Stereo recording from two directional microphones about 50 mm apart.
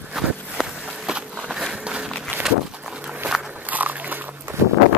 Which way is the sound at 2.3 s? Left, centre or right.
Right.